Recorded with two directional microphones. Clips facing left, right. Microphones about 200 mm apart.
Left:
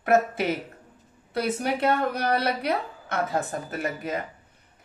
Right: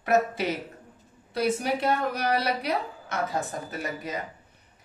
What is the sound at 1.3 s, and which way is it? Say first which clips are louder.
A woman's voice: even; 55° left (ahead or behind).